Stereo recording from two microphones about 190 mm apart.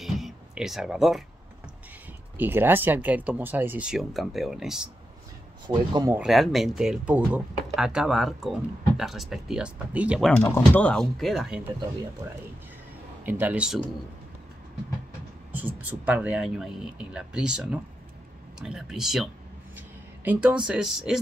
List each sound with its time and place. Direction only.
0.0 s a sound: centre (ahead or behind)
2.3 s speech: 10° right (ahead or behind)
5.7 s speech: 20° right (ahead or behind)
6.1 s speech: centre (ahead or behind)
10.3 s speech: 10° left (ahead or behind)
13.2 s speech: 10° right (ahead or behind)
15.5 s speech: 10° right (ahead or behind)
20.2 s speech: 10° right (ahead or behind)